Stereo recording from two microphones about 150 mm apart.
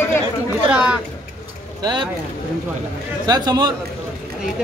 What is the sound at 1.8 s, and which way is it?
Speech, 30° right (ahead or behind).